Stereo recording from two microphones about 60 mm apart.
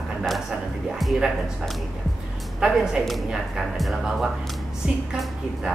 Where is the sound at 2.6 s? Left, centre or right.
Centre.